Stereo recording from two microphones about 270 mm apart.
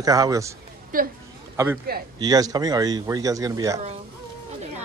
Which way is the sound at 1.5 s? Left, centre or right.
Centre.